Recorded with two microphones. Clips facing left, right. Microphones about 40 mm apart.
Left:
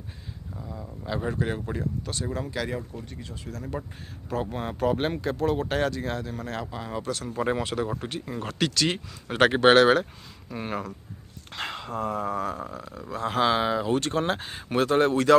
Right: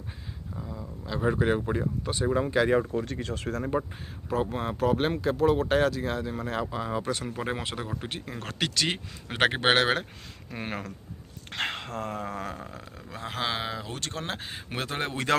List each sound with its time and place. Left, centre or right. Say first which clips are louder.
0.6 s a sound: even; centre
1.2 s speech: right 6 dB; centre
2.8 s speech: right 9 dB; right
3.4 s speech: right 5 dB; right
4.3 s speech: right 1 dB; centre
7.1 s speech: left 3 dB; centre
10.5 s a sound: left 3 dB; right
11.5 s speech: even; right
12.1 s a sound: left 5 dB; right
13.2 s speech: left 8 dB; centre
14.3 s speech: left 7 dB; centre